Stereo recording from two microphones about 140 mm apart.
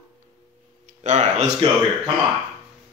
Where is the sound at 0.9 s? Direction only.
55° right (ahead or behind).